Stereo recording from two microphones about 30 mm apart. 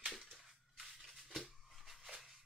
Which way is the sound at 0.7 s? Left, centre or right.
Centre.